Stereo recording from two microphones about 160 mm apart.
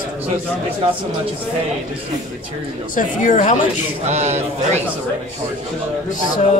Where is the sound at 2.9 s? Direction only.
50° left (ahead or behind).